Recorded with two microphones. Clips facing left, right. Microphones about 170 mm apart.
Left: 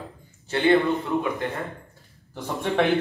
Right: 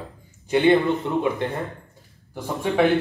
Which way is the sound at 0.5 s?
15° right (ahead or behind).